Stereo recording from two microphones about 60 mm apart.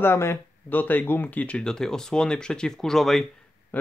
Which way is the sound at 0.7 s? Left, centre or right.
Left.